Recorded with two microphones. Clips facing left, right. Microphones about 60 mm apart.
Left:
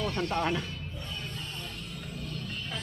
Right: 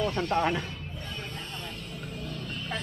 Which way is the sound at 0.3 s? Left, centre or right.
Centre.